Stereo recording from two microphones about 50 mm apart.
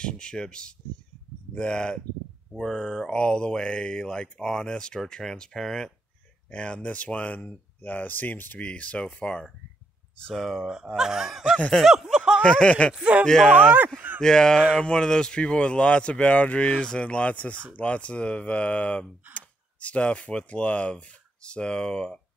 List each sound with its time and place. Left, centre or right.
0.0 s speech: centre
6.5 s speech: left
10.3 s speech: centre
11.0 s snicker: centre
11.7 s speech: centre
12.4 s speech: left
13.2 s speech: centre
13.5 s speech: right
14.2 s speech: centre
16.7 s speech: centre